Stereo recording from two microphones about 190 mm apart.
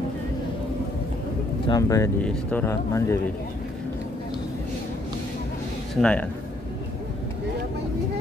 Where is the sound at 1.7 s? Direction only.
15° left (ahead or behind).